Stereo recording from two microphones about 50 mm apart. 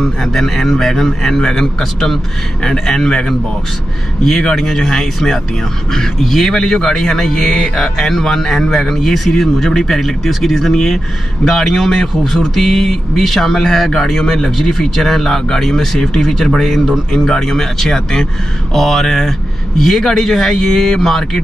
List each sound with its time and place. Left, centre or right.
0.2 s speech: centre
4.2 s speech: centre
7.5 s music: centre
8.0 s a man's voice: centre